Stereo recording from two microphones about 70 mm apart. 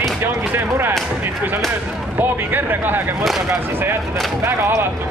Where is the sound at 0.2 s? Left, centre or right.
Right.